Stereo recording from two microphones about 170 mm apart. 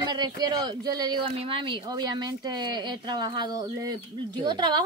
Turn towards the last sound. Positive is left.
turn(degrees=-25)  # may be behind; listen again after turning